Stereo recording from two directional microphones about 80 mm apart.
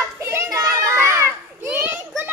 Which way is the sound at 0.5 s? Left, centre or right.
Right.